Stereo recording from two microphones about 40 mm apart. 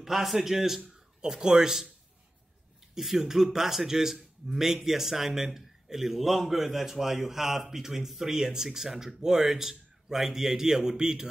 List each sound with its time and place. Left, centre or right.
0.0 s a man's voice: centre
2.9 s speech: centre